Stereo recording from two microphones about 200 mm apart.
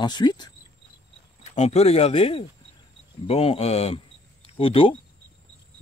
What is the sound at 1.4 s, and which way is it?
Speech, 35° left (ahead or behind).